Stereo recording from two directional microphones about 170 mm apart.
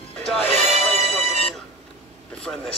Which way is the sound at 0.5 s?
40° right (ahead or behind).